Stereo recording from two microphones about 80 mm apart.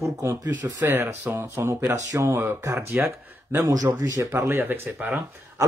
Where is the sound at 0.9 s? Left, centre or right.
Right.